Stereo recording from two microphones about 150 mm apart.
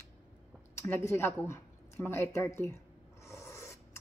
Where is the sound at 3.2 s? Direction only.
20° left (ahead or behind).